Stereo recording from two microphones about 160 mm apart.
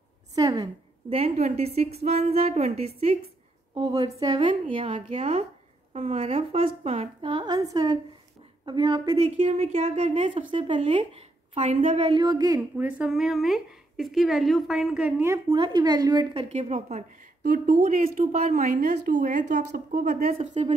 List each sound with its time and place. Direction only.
0.3 s a woman's voice: 25° right (ahead or behind)
1.1 s a woman's voice: 40° right (ahead or behind)
3.7 s a woman's voice: 25° right (ahead or behind); by 12.1 s 45° right (ahead or behind)
12.1 s a woman's voice: 25° right (ahead or behind)
12.7 s a woman's voice: 10° right (ahead or behind)
15.3 s a woman's voice: 30° right (ahead or behind)
16.4 s a woman's voice: 45° right (ahead or behind)
17.6 s a woman's voice: 55° right (ahead or behind)
20.3 s a woman's voice: 35° right (ahead or behind)